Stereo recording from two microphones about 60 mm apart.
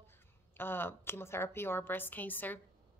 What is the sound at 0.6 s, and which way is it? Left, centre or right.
A woman's voice, left.